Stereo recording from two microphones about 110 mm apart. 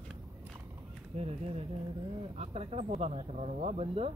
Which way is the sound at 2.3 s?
70° right (ahead or behind).